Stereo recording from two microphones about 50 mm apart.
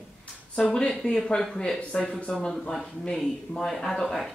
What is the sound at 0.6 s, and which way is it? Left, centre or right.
Speech, centre.